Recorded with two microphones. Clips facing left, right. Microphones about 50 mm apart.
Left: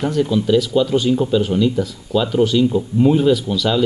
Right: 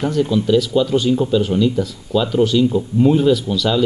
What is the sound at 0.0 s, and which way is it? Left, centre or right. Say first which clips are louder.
Speech: even; centre.